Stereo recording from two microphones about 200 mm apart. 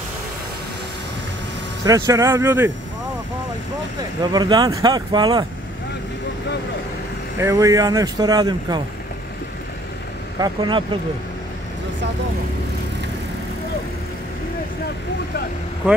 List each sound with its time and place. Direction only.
1.9 s speech: 15° right (ahead or behind)
4.2 s speech: 20° right (ahead or behind)
7.3 s speech: 15° right (ahead or behind)
10.4 s speech: 25° right (ahead or behind)